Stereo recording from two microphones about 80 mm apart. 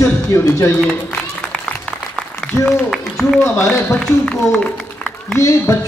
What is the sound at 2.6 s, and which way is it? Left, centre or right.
Speech, centre.